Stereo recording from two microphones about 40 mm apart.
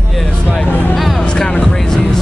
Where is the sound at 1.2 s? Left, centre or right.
Left.